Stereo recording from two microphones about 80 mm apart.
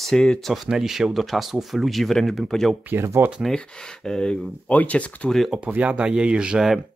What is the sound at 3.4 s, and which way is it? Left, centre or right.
Speech, centre.